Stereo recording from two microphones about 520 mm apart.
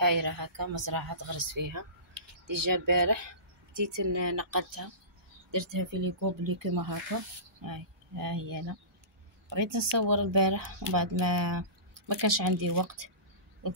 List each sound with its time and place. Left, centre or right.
0.0 s speech: right